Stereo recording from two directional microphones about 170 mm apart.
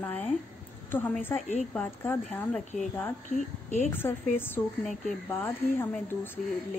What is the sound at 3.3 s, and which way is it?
Speech, 45° left (ahead or behind).